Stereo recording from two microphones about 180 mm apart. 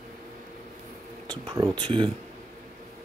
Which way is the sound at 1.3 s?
25° right (ahead or behind).